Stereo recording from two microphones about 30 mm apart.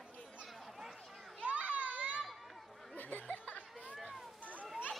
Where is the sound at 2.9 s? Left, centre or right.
Left.